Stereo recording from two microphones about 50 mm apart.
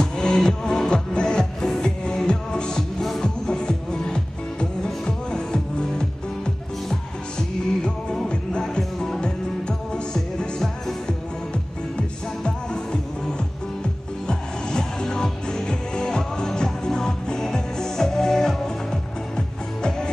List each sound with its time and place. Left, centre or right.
0.0 s music: centre
3.0 s music: centre
3.4 s music: centre
10.6 s music: centre
12.4 s music: centre
14.2 s music: centre